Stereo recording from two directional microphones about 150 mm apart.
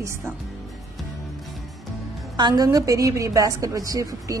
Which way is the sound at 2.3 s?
25° right (ahead or behind).